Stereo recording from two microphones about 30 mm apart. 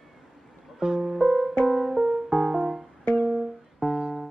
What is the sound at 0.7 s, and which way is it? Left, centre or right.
Music, centre.